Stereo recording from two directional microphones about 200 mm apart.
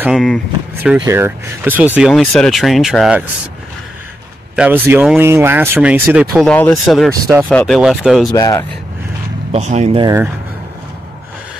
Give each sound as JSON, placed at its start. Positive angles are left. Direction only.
{"t": 0.0, "sound": "speech", "side_deg": 0}
{"t": 1.0, "sound": "speech", "side_deg": -10}
{"t": 4.6, "sound": "speech", "side_deg": -10}
{"t": 8.3, "sound": "speech", "side_deg": 15}
{"t": 9.5, "sound": "speech", "side_deg": -35}
{"t": 10.0, "sound": "speech", "side_deg": -10}